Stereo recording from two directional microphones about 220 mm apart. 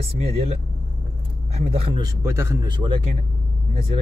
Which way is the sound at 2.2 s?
10° right (ahead or behind).